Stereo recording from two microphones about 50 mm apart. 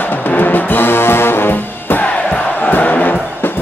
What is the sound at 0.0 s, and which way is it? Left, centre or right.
Music, left.